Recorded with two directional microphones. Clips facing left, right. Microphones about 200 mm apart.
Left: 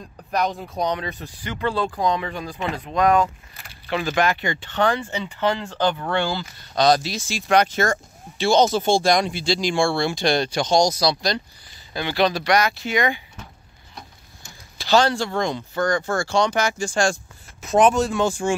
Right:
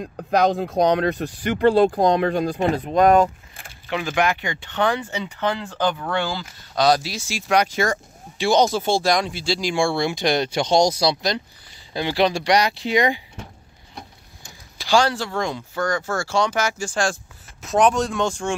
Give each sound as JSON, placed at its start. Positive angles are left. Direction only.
{"t": 0.3, "sound": "speech", "side_deg": -90}
{"t": 2.0, "sound": "speech", "side_deg": -60}
{"t": 3.9, "sound": "speech", "side_deg": -15}
{"t": 14.8, "sound": "speech", "side_deg": -10}